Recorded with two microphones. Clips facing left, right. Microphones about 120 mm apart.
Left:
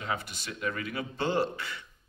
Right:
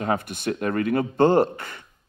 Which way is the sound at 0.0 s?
50° right (ahead or behind).